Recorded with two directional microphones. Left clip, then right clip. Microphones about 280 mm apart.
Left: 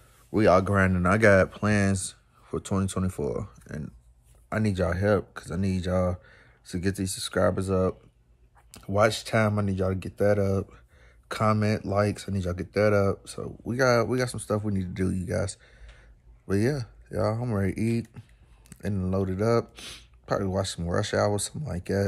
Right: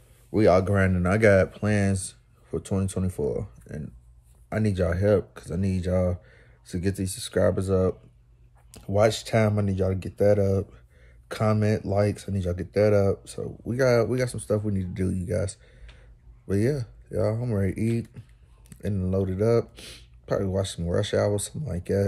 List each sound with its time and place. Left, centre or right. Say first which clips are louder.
0.3 s speech: right 1 dB; centre